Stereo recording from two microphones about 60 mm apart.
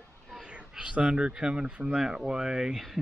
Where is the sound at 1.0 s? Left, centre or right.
Centre.